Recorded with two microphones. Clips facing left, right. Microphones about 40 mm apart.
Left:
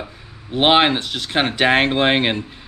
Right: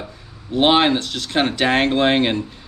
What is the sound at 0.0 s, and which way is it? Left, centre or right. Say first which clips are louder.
Speech: left 1 dB; left.